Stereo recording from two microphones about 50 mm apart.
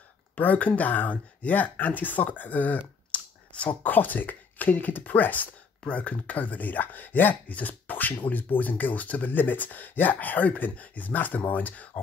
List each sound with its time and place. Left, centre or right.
0.4 s speech: left